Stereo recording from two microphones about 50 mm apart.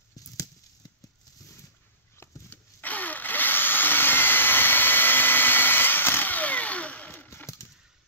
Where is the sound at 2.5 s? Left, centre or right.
Left.